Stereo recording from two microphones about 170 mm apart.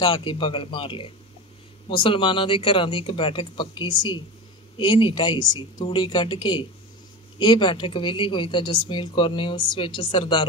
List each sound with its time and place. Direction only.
0.0 s a woman's voice: 30° left (ahead or behind)